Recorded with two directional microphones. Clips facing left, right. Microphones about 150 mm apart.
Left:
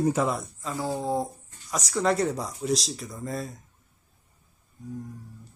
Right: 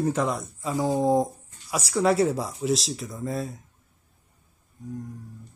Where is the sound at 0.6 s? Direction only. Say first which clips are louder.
Right 8 dB; 15° right (ahead or behind).